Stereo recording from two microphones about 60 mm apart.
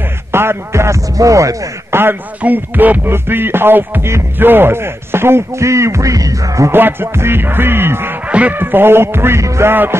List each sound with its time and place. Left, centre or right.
0.3 s speech: right
1.9 s speech: right
2.4 s music: right
4.1 s speech: right
6.7 s music: right
8.3 s goose: right
8.5 s music: right
9.4 s speech: right
9.7 s music: right